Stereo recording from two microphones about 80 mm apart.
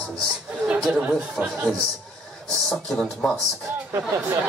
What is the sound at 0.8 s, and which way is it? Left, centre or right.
Speech, centre.